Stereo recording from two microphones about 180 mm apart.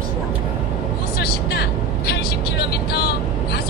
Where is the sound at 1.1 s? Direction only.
60° left (ahead or behind).